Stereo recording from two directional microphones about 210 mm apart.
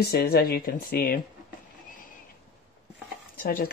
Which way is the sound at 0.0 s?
50° left (ahead or behind).